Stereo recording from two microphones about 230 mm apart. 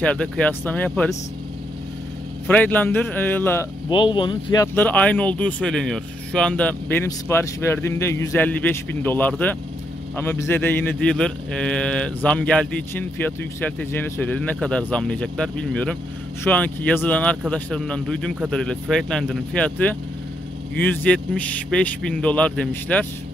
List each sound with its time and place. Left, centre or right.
0.0 s speech: centre
2.4 s speech: centre
3.9 s speech: left
4.7 s speech: centre